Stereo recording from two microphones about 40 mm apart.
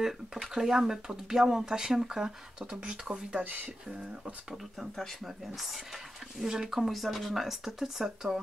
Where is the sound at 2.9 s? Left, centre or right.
Centre.